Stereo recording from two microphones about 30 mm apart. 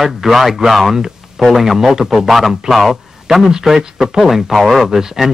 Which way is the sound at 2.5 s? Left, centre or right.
Centre.